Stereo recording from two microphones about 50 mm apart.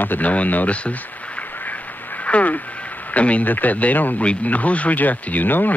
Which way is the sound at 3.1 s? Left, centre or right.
Left.